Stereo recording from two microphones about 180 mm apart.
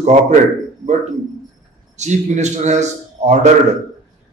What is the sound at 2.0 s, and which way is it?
A man's voice, 40° right (ahead or behind).